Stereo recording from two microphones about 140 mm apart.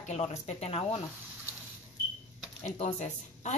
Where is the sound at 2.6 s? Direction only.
50° left (ahead or behind).